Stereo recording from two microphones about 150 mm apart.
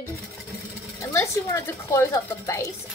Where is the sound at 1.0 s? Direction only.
20° left (ahead or behind).